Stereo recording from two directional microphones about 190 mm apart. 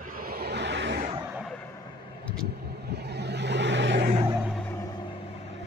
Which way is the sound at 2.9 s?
60° right (ahead or behind).